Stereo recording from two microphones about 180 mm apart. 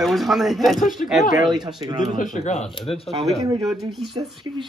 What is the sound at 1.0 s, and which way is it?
Speech, 45° left (ahead or behind).